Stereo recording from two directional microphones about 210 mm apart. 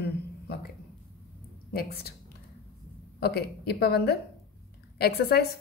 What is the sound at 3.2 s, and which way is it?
Speech, 50° left (ahead or behind).